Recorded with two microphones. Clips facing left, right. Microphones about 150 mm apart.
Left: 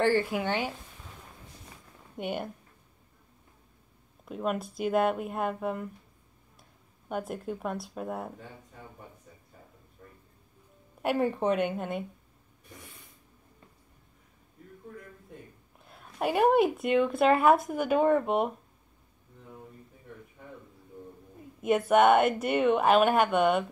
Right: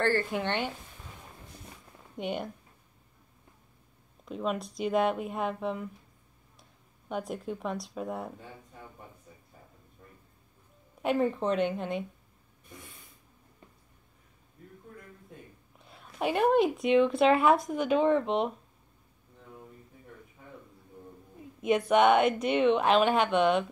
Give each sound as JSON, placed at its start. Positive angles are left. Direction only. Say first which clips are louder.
{"t": 0.0, "sound": "a woman's voice", "louder": "left 2 dB", "side_deg": 10}
{"t": 2.1, "sound": "a woman's voice", "louder": "even", "side_deg": 5}
{"t": 4.3, "sound": "a woman's voice", "louder": "left 1 dB", "side_deg": 5}
{"t": 7.1, "sound": "a woman's voice", "louder": "left 1 dB", "side_deg": 0}
{"t": 11.0, "sound": "a woman's voice", "louder": "even", "side_deg": 5}
{"t": 15.8, "sound": "a sound", "louder": "left 1 dB", "side_deg": 0}
{"t": 16.4, "sound": "a woman's voice", "louder": "even", "side_deg": 5}
{"t": 21.5, "sound": "a woman's voice", "louder": "left 1 dB", "side_deg": 5}